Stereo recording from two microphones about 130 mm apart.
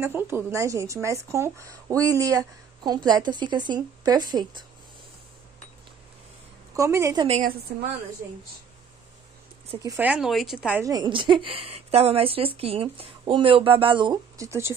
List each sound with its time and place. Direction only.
0.0 s speech: 20° right (ahead or behind); by 4.6 s 35° right (ahead or behind)
6.7 s a woman's voice: 25° right (ahead or behind)
9.9 s speech: 10° right (ahead or behind)
10.8 s speech: 30° right (ahead or behind)
14.3 s speech: 25° right (ahead or behind)